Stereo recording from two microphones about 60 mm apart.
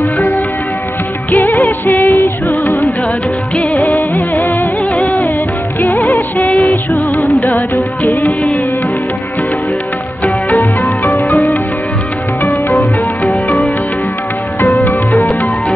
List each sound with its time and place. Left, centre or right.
1.5 s music: left
2.4 s music: left
4.1 s music: left
6.7 s music: left
8.0 s music: left
10.2 s music: left
11.1 s music: left
14.8 s music: left